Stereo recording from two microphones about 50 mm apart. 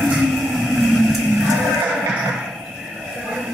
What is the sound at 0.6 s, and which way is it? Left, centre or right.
Cattle, centre.